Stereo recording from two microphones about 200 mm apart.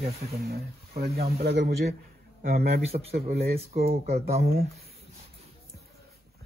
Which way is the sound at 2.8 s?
30° right (ahead or behind).